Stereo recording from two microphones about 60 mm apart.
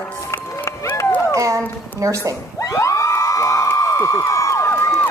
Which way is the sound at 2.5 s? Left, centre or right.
Left.